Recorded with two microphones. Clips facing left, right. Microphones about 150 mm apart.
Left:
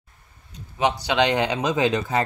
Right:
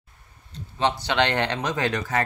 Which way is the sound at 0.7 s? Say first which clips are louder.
Left 2 dB; 10° left (ahead or behind).